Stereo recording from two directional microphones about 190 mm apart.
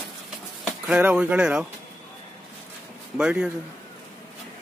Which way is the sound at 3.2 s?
5° right (ahead or behind).